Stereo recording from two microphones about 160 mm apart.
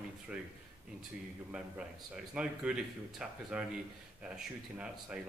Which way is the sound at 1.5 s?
5° right (ahead or behind).